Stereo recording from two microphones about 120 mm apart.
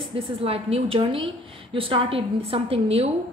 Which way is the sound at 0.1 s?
55° right (ahead or behind).